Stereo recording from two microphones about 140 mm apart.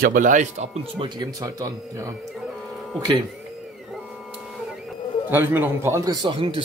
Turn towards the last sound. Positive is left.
turn(degrees=-35)  # may be behind; listen again after turning